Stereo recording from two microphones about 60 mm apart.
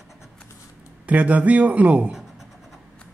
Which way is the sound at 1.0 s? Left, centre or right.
Right.